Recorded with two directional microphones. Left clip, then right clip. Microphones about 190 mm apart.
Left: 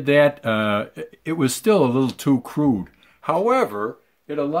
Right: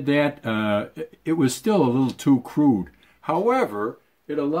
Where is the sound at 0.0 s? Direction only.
25° left (ahead or behind).